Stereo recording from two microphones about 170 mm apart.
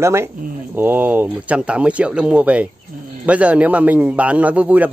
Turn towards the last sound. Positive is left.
turn(degrees=-10)  # may be behind; listen again after turning